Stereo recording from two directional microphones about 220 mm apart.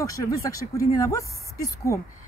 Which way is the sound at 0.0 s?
15° left (ahead or behind).